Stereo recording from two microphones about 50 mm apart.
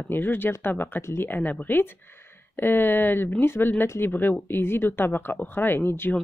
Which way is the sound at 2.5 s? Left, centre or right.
Left.